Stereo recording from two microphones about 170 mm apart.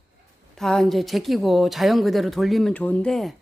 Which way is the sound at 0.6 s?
5° left (ahead or behind).